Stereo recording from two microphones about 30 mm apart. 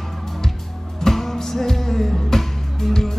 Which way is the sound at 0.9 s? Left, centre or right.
Centre.